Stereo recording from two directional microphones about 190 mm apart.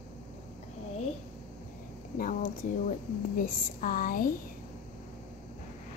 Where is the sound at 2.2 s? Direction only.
45° left (ahead or behind).